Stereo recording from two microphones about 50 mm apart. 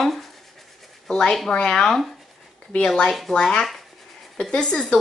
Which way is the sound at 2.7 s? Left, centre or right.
Centre.